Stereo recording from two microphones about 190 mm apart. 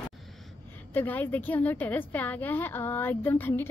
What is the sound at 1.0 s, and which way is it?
A woman's voice, 10° left (ahead or behind).